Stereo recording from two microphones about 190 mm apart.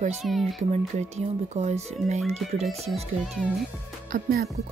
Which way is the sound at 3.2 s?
Centre (ahead or behind).